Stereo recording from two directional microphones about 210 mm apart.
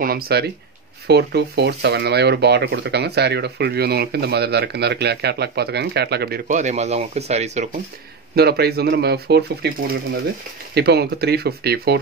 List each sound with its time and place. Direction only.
0.0 s speech: 45° right (ahead or behind)
6.4 s speech: 35° right (ahead or behind)
8.4 s speech: 50° right (ahead or behind)
10.7 s speech: 50° right (ahead or behind)